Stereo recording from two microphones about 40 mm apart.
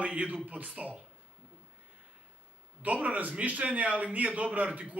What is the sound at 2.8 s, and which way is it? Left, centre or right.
A man's voice, right.